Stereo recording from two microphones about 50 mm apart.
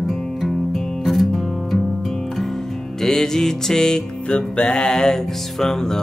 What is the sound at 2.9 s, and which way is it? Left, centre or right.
Music, centre.